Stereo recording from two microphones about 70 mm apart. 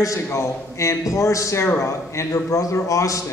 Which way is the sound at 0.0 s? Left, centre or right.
Left.